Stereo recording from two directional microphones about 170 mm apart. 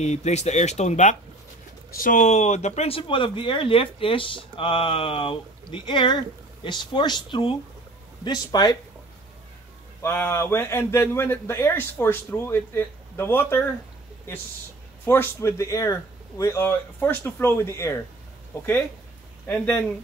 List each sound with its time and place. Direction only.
0.0 s speech: 40° left (ahead or behind); by 8.7 s 25° left (ahead or behind)
10.0 s a man's voice: 15° left (ahead or behind)
15.0 s a man's voice: 15° left (ahead or behind)
19.4 s a man's voice: 10° left (ahead or behind)